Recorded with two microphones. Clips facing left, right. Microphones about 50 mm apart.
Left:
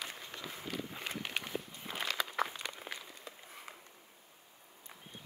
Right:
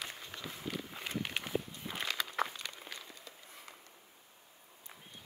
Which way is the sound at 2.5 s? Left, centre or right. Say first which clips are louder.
Left 2 dB; centre.